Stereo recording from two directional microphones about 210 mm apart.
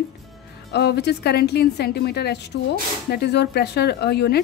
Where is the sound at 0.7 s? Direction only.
50° left (ahead or behind).